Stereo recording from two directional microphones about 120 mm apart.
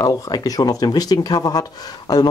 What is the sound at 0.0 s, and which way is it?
Speech, 30° left (ahead or behind).